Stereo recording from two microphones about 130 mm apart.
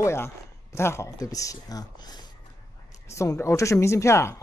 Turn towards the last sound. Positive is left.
turn(degrees=20)  # may be behind; listen again after turning